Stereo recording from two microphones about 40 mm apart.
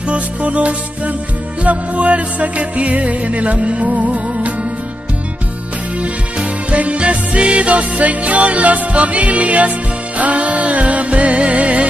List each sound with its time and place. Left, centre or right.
0.1 s music: right
5.9 s music: right